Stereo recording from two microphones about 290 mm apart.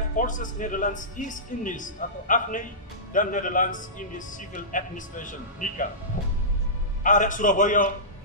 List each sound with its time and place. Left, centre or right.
0.1 s a woman's voice: left
6.1 s music: left
7.0 s a woman's voice: left